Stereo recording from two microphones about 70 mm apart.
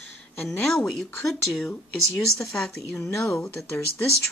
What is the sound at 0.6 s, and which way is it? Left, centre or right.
Speech, centre.